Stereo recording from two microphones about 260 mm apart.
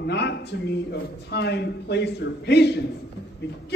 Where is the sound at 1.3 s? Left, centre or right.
Left.